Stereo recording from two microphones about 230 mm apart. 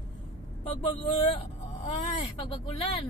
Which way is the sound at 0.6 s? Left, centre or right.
Left.